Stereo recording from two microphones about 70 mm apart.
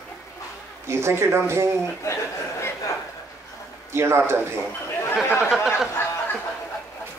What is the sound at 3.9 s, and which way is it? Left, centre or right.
Speech, right.